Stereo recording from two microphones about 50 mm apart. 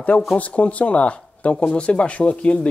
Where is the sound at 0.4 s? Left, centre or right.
Left.